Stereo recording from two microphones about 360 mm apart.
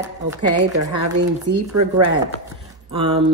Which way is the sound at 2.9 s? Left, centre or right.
Centre.